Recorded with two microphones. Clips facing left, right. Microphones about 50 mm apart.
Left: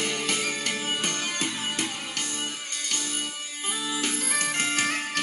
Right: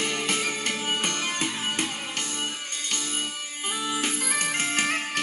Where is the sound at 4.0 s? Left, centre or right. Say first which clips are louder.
Right 1 dB; right.